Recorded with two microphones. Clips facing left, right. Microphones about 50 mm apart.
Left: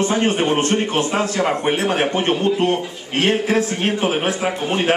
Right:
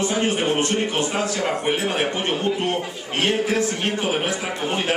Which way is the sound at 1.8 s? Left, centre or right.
Left.